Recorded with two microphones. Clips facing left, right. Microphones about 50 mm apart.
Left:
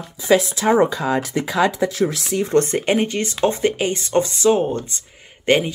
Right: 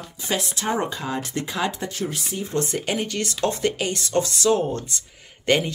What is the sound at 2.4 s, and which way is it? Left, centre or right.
Speech, left.